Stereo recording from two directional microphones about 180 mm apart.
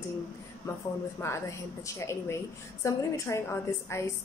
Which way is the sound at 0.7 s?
15° left (ahead or behind).